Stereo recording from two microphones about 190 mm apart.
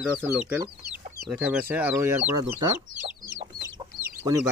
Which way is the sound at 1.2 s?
10° right (ahead or behind).